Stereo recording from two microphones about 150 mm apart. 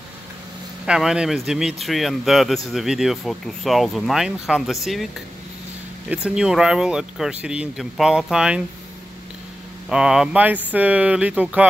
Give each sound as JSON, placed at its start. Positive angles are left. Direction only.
{"t": 0.8, "sound": "speech", "side_deg": -5}
{"t": 6.0, "sound": "speech", "side_deg": -5}
{"t": 9.8, "sound": "speech", "side_deg": -5}